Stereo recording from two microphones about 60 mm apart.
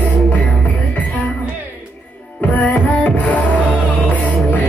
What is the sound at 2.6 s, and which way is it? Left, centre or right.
Music, left.